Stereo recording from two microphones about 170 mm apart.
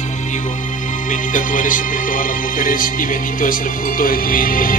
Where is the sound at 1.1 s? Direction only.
50° left (ahead or behind).